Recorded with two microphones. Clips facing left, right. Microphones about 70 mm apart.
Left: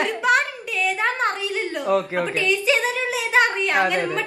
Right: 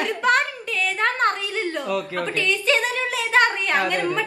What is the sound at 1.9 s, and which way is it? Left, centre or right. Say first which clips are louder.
Speech: left 4 dB; left.